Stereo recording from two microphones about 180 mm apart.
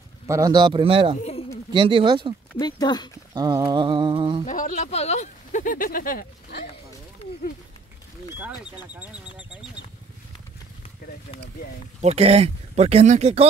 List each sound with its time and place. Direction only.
0.3 s a sound: 20° right (ahead or behind)
2.5 s speech: 20° left (ahead or behind)
3.3 s a sound: 25° right (ahead or behind)
4.5 s speech: 45° left (ahead or behind)
8.4 s speech: 10° right (ahead or behind)
12.0 s speech: 35° right (ahead or behind)